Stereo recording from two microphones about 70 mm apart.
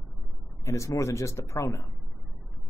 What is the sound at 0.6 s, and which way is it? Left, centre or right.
Speech, left.